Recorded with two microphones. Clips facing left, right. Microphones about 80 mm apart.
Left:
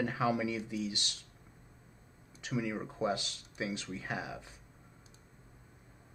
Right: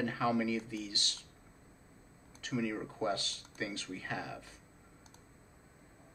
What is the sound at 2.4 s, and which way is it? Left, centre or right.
Speech, centre.